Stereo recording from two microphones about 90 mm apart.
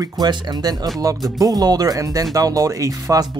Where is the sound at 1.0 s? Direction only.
40° right (ahead or behind).